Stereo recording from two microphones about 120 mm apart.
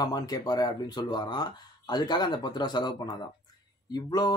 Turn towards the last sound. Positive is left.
turn(degrees=35)  # may be behind; listen again after turning